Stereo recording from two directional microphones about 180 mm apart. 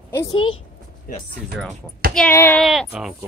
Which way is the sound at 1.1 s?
50° left (ahead or behind).